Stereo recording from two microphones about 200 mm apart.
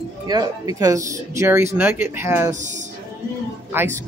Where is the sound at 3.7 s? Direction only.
10° right (ahead or behind).